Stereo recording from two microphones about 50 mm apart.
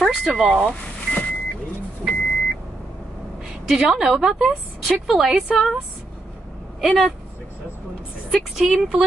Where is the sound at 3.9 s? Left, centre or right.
Centre.